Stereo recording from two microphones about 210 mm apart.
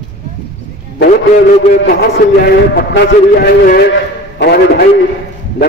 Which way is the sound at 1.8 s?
50° left (ahead or behind).